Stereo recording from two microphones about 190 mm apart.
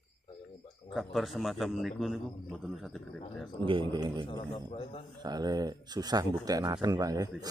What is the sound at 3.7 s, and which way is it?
Speech, 25° right (ahead or behind).